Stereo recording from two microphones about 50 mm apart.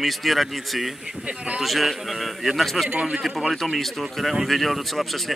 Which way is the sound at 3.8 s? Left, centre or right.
Centre.